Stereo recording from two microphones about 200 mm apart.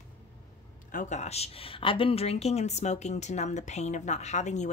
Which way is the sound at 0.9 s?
35° left (ahead or behind).